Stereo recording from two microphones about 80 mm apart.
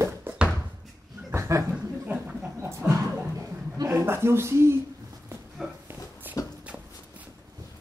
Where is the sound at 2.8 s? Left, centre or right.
Right.